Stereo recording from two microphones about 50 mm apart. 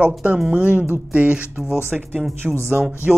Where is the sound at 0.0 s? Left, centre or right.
Right.